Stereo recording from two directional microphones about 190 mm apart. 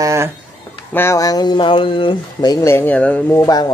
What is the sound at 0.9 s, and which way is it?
Speech, 15° left (ahead or behind).